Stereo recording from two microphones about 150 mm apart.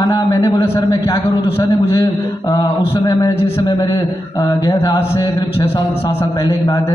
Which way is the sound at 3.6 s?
30° left (ahead or behind).